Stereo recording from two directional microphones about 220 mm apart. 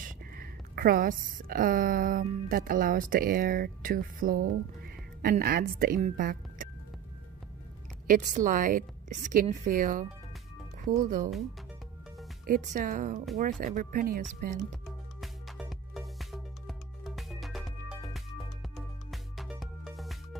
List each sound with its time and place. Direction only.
0.0 s a woman's voice: 40° right (ahead or behind)
8.1 s speech: 35° right (ahead or behind)
12.4 s speech: 35° right (ahead or behind)
14.9 s music: centre (ahead or behind)